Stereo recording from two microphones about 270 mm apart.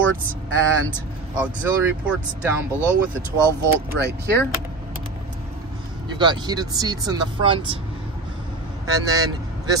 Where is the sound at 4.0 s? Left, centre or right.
Right.